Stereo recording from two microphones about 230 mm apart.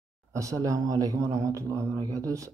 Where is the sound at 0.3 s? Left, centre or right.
Centre.